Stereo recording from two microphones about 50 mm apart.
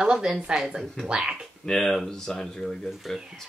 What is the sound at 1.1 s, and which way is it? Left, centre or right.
Speech, centre.